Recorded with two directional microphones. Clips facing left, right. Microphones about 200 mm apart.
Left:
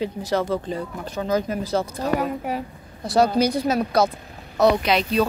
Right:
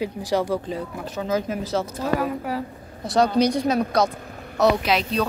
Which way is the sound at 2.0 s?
20° left (ahead or behind).